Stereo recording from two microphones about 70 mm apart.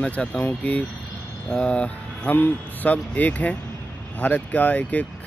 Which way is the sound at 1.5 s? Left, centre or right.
Centre.